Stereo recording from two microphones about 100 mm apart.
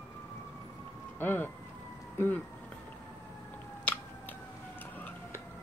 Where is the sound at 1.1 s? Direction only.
20° left (ahead or behind).